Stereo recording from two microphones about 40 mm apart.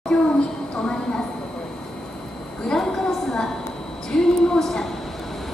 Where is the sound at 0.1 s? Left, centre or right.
Centre.